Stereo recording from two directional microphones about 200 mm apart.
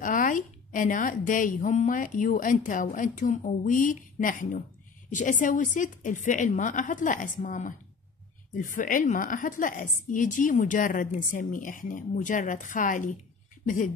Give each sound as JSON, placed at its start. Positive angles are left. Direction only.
{"t": 0.0, "sound": "a woman's voice", "side_deg": 40}